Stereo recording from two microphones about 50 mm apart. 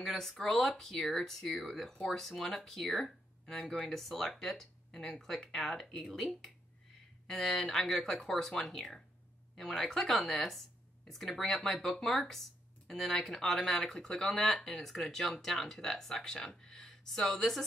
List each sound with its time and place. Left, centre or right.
0.0 s speech: centre
2.0 s speech: centre
2.2 s speech: centre
9.6 s speech: centre